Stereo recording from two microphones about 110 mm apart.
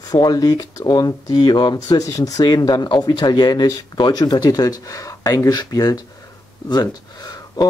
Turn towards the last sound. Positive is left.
turn(degrees=35)  # may be behind; listen again after turning